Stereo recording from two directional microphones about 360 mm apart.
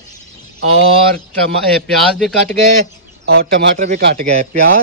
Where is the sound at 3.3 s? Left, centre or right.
Right.